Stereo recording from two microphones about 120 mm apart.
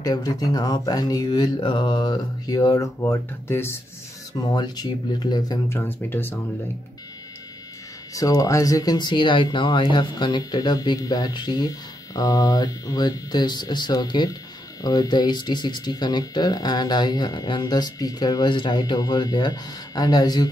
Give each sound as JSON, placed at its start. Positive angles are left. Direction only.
{"t": 0.0, "sound": "speech", "side_deg": 35}
{"t": 4.3, "sound": "speech", "side_deg": 35}
{"t": 5.7, "sound": "speech", "side_deg": 20}
{"t": 8.1, "sound": "speech", "side_deg": 30}